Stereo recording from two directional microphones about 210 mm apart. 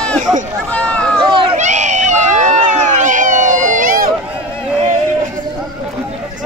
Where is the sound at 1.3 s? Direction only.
25° right (ahead or behind).